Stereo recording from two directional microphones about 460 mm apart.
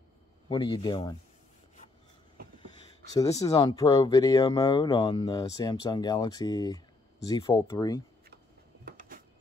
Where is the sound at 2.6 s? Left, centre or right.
Centre.